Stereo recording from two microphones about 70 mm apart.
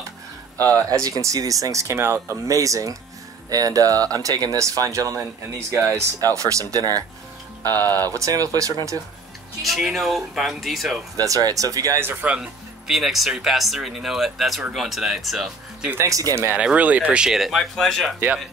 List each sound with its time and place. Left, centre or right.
1.0 s speech: right
2.4 s speech: right
7.7 s speech: left
8.1 s speech: right
9.6 s speech: centre
11.1 s speech: right
12.0 s speech: right
12.3 s speech: centre
16.1 s speech: right
16.5 s speech: centre